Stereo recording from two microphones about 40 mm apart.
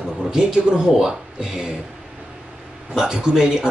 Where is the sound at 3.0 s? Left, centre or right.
Centre.